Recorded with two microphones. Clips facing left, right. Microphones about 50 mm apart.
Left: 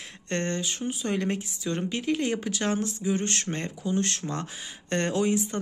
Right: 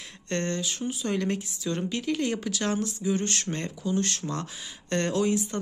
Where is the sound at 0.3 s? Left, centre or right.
Left.